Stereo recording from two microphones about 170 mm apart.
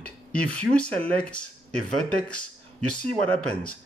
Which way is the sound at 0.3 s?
5° left (ahead or behind).